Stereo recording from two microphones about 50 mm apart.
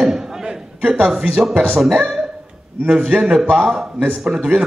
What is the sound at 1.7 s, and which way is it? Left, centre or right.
Speech, centre.